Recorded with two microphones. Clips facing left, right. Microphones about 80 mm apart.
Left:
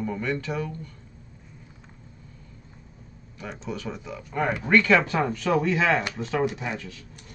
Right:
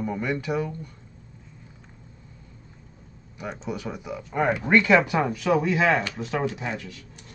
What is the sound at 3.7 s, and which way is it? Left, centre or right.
Speech, centre.